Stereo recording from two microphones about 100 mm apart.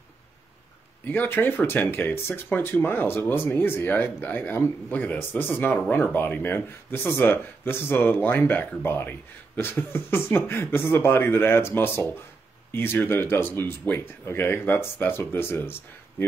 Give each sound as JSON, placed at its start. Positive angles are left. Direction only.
{"t": 1.0, "sound": "speech", "side_deg": 20}